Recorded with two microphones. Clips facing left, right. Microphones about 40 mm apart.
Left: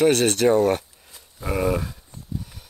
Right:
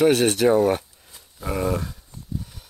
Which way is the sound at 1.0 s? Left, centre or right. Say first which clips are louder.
Left 1 dB; centre.